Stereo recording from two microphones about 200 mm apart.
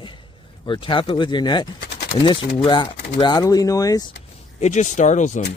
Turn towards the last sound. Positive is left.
turn(degrees=35)  # may be behind; listen again after turning